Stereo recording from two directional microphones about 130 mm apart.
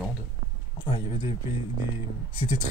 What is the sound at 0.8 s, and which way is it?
Speech, 40° left (ahead or behind).